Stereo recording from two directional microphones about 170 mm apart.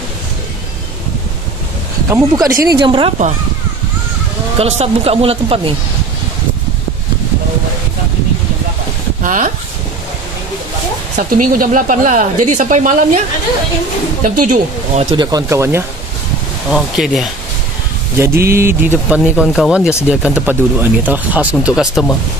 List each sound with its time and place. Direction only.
2.0 s speech: 20° right (ahead or behind)
4.6 s a woman's voice: 35° right (ahead or behind)
9.2 s speech: 50° right (ahead or behind)
11.1 s speech: 50° right (ahead or behind)
14.4 s speech: 50° right (ahead or behind)
15.1 s speech: 20° right (ahead or behind)
16.7 s speech: centre (ahead or behind)
18.1 s speech: 15° right (ahead or behind)